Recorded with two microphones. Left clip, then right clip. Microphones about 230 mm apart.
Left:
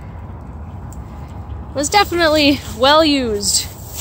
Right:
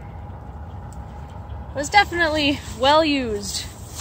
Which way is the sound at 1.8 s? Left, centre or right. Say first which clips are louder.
Left 3 dB; centre.